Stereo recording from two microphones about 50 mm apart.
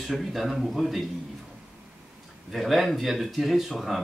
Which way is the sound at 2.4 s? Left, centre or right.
Centre.